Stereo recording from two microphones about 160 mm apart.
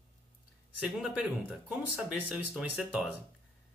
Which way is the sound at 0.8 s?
5° right (ahead or behind).